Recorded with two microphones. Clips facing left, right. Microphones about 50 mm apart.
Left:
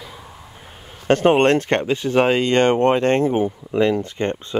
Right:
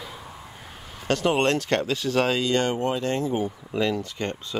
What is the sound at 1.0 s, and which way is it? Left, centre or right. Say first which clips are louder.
Speech: left 7 dB; left.